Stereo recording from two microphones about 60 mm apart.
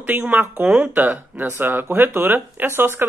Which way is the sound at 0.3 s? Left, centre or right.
Right.